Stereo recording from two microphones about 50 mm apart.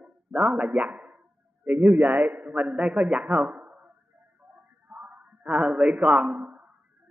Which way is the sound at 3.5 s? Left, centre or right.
Right.